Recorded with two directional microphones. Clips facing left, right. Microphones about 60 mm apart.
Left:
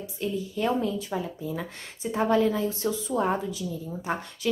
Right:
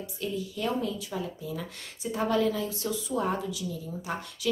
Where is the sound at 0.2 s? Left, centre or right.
Left.